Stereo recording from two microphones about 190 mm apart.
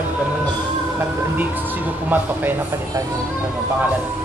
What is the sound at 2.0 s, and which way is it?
Speech, 10° right (ahead or behind).